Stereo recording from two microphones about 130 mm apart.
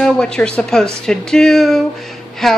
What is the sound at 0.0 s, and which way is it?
A woman's voice, 5° left (ahead or behind).